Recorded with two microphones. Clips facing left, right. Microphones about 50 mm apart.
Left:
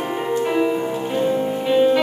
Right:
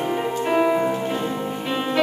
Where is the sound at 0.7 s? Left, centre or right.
Centre.